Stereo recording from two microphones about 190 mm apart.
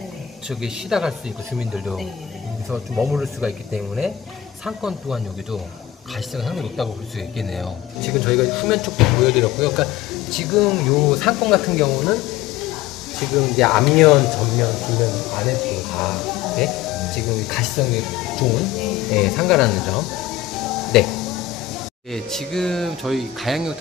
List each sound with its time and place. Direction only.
0.5 s speech: centre (ahead or behind)